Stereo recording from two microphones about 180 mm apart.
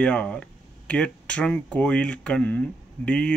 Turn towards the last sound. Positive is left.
turn(degrees=5)  # may be behind; listen again after turning